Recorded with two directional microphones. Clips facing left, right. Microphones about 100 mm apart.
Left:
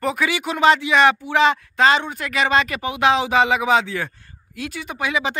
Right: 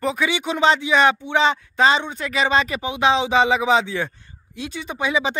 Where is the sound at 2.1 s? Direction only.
30° right (ahead or behind).